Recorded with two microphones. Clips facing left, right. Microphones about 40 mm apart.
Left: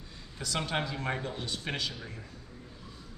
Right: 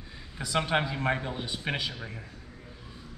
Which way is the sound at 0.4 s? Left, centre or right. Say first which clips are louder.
Right 5 dB; centre.